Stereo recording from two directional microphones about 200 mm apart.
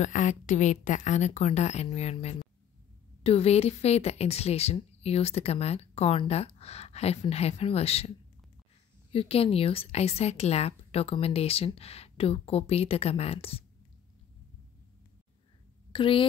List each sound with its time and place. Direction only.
0.0 s speech: 40° left (ahead or behind)
9.1 s speech: 30° left (ahead or behind)
15.9 s a woman's voice: 25° left (ahead or behind)